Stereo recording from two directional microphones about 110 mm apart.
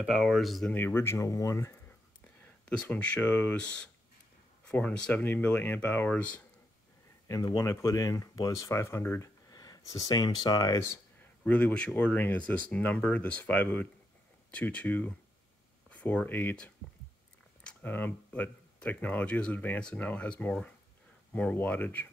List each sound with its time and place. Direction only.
0.0 s speech: 5° right (ahead or behind)
0.7 s speech: 20° left (ahead or behind)
2.2 s speech: 15° left (ahead or behind)
7.2 s speech: 30° left (ahead or behind)
9.5 s speech: 35° left (ahead or behind)
11.4 s speech: 15° left (ahead or behind)